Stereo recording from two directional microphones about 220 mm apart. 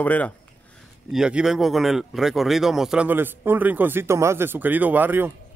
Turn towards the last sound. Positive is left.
turn(degrees=-10)  # may be behind; listen again after turning